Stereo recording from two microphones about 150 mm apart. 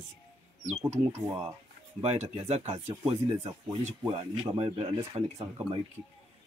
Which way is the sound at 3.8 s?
55° right (ahead or behind).